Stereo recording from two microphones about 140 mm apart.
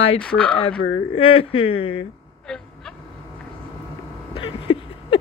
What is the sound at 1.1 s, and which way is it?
Speech, 40° left (ahead or behind).